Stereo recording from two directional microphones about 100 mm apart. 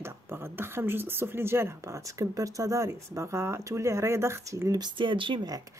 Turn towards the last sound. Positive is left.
turn(degrees=-55)  # may be behind; listen again after turning